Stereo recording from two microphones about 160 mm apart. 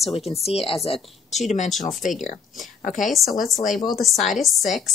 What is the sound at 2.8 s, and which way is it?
Speech, 50° left (ahead or behind).